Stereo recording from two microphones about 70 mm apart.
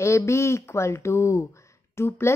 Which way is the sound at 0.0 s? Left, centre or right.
Left.